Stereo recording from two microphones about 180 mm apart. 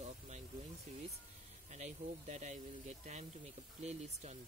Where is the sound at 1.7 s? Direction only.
40° right (ahead or behind).